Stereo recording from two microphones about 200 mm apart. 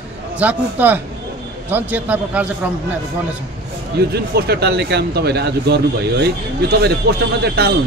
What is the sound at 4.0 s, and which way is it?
A man's voice, 55° right (ahead or behind).